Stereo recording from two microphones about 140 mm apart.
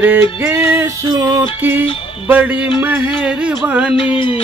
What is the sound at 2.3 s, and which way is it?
Music, 10° right (ahead or behind).